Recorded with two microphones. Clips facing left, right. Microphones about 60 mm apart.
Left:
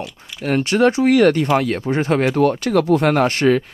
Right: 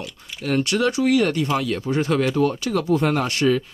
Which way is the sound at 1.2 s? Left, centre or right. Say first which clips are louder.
Left 6 dB; left.